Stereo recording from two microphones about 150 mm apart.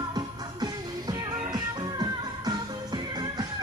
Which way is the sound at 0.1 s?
25° right (ahead or behind).